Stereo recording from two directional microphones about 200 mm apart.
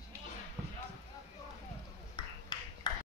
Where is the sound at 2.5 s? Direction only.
20° left (ahead or behind).